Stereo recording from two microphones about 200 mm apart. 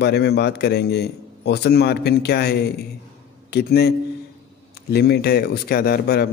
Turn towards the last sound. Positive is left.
turn(degrees=50)  # may be behind; listen again after turning